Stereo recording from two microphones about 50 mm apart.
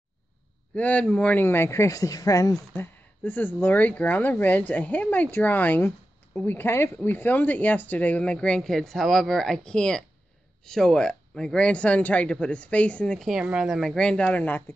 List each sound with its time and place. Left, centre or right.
0.7 s speech: left
1.3 s speech: left
2.7 s speech: left
7.1 s speech: left
13.3 s speech: centre
13.8 s speech: centre; by 14.6 s left